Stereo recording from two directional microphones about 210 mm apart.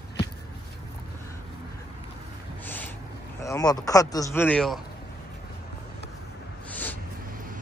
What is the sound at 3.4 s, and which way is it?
Speech, 15° left (ahead or behind).